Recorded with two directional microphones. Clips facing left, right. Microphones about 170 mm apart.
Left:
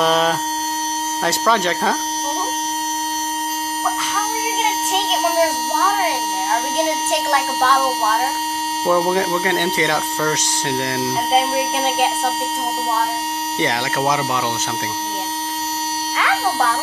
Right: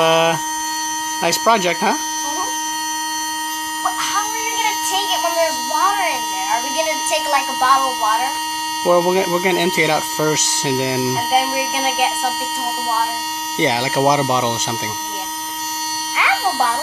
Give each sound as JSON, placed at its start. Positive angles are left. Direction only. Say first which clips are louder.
{"t": 0.0, "sound": "mains hum", "louder": "right 2 dB", "side_deg": -5}
{"t": 1.2, "sound": "speech", "louder": "right 3 dB", "side_deg": -5}
{"t": 6.8, "sound": "speech", "louder": "even", "side_deg": -5}
{"t": 11.5, "sound": "speech", "louder": "left 1 dB", "side_deg": 0}
{"t": 13.6, "sound": "speech", "louder": "right 4 dB", "side_deg": -15}
{"t": 16.2, "sound": "music", "louder": "right 1 dB", "side_deg": -10}